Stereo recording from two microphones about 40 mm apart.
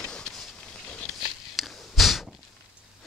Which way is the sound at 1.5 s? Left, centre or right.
Centre.